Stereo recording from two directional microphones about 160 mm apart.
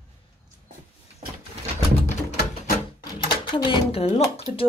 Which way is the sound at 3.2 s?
30° left (ahead or behind).